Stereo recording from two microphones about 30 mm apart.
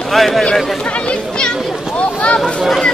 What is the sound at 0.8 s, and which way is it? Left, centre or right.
Speech, left.